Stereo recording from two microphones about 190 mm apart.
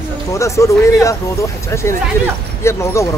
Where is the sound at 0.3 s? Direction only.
15° left (ahead or behind).